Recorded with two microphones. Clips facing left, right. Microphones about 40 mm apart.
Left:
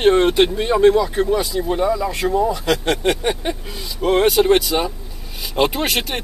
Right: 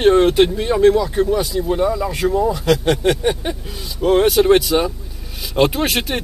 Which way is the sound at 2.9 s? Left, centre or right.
Centre.